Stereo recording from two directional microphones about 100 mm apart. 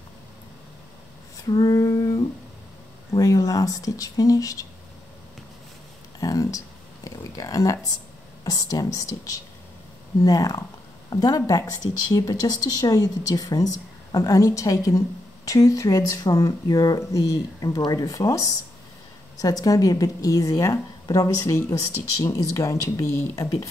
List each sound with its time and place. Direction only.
1.5 s female singing: 40° left (ahead or behind)
3.1 s speech: 35° left (ahead or behind)
6.1 s a sound: 35° left (ahead or behind)
7.1 s speech: 35° left (ahead or behind)
10.2 s speech: 35° left (ahead or behind)